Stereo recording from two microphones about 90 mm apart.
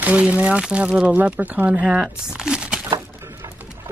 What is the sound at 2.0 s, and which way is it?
Crumpling, 5° right (ahead or behind).